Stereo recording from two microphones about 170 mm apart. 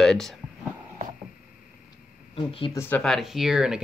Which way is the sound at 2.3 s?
30° left (ahead or behind).